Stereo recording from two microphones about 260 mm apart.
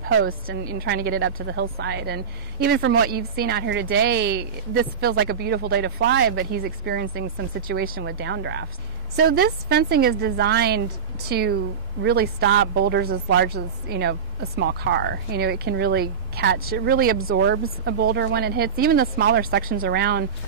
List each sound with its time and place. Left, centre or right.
0.1 s a woman's voice: right
0.5 s a woman's voice: right
17.2 s a woman's voice: right